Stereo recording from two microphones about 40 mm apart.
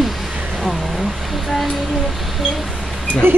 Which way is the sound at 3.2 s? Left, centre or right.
Right.